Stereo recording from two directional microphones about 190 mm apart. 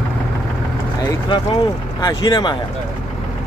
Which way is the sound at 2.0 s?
20° left (ahead or behind).